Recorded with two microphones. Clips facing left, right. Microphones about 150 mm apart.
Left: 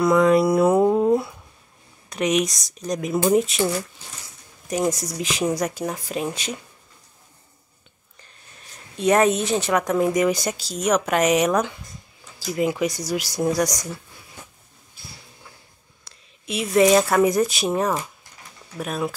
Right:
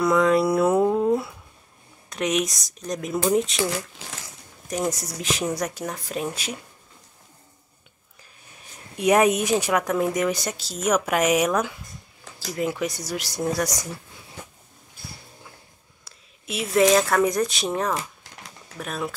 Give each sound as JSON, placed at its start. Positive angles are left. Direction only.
{"t": 0.0, "sound": "speech", "side_deg": 0}
{"t": 4.6, "sound": "speech", "side_deg": 0}
{"t": 8.9, "sound": "speech", "side_deg": -10}
{"t": 16.0, "sound": "speech", "side_deg": -5}
{"t": 18.2, "sound": "a sound", "side_deg": -90}
{"t": 18.8, "sound": "speech", "side_deg": 5}